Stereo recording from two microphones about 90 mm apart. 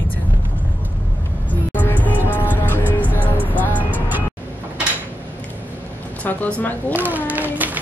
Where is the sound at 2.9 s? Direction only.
20° left (ahead or behind).